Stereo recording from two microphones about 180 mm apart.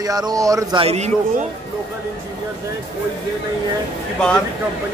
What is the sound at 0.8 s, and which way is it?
Speech, 35° right (ahead or behind).